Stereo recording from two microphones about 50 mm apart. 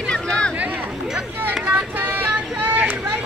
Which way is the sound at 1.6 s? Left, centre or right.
Right.